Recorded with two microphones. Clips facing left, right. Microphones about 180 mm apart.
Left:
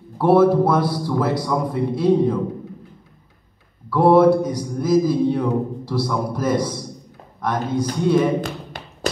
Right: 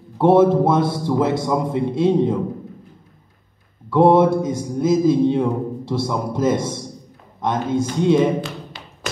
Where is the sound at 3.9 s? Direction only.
25° right (ahead or behind).